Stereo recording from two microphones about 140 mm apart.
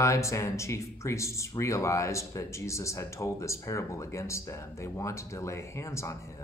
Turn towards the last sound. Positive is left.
turn(degrees=20)  # may be behind; listen again after turning